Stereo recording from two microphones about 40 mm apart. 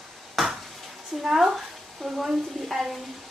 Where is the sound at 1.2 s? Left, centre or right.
Centre.